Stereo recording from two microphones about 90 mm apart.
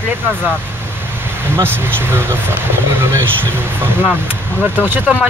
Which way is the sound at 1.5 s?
25° right (ahead or behind).